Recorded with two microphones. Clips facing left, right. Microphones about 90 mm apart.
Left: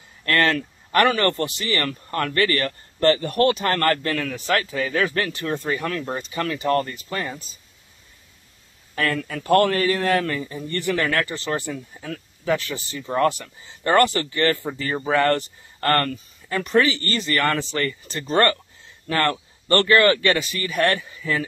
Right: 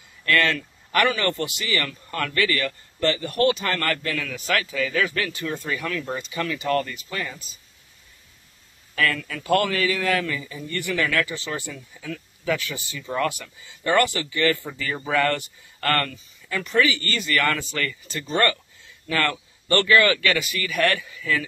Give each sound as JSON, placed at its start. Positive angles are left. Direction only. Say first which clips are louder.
{"t": 0.2, "sound": "a man's voice", "louder": "left 2 dB", "side_deg": 35}
{"t": 8.9, "sound": "a man's voice", "louder": "even", "side_deg": 35}